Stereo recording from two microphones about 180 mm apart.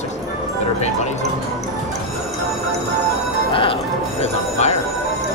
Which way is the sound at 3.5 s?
30° left (ahead or behind).